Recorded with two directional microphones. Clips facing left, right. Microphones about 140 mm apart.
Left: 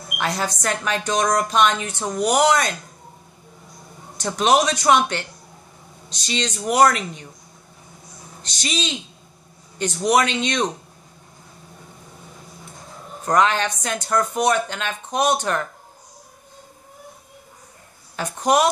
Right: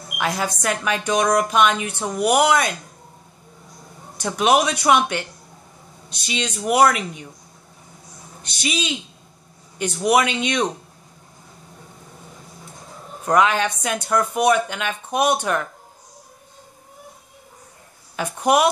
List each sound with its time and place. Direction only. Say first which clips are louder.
0.2 s a woman's voice: right 1 dB; 10° right (ahead or behind)
4.2 s a woman's voice: even; 10° right (ahead or behind)
6.2 s a woman's voice: even; 10° right (ahead or behind)
8.4 s a sound: even; 55° right (ahead or behind)
8.6 s a woman's voice: right 1 dB; 10° right (ahead or behind)
13.2 s a woman's voice: right 1 dB; 5° right (ahead or behind)
18.1 s a woman's voice: right 1 dB; 10° right (ahead or behind)